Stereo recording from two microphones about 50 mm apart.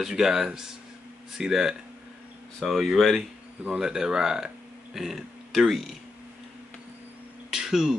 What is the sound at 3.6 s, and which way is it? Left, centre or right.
Speech, centre.